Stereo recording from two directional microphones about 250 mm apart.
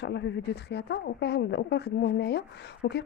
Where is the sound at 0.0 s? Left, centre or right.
Left.